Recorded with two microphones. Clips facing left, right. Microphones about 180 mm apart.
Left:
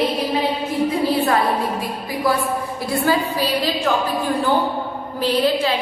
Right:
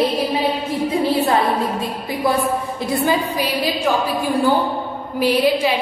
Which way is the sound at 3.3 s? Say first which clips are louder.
Even; 15° right (ahead or behind).